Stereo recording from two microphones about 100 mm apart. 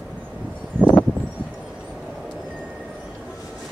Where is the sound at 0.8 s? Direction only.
15° left (ahead or behind).